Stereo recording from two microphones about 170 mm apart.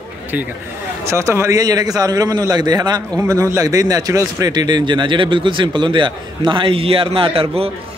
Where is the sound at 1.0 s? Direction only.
15° right (ahead or behind).